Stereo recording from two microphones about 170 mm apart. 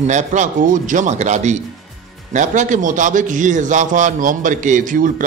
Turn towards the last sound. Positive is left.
turn(degrees=-50)  # may be behind; listen again after turning